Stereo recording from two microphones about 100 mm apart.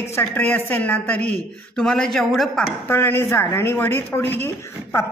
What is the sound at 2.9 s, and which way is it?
Speech, 25° left (ahead or behind).